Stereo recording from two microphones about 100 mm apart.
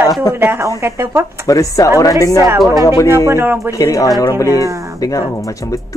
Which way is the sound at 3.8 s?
35° left (ahead or behind).